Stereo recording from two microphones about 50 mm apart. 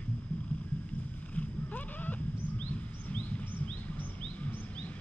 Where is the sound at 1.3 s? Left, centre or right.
Left.